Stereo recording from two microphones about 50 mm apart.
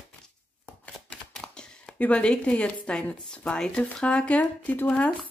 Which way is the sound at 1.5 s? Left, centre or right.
Centre.